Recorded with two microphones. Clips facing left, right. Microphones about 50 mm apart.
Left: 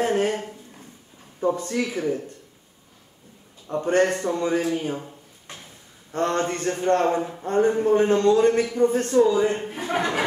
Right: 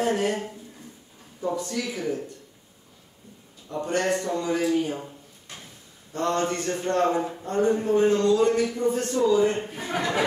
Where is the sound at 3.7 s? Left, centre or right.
Left.